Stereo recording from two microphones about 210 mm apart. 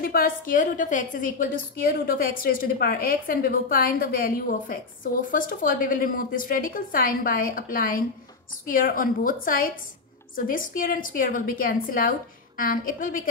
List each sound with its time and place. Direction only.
0.0 s a woman's voice: 45° left (ahead or behind)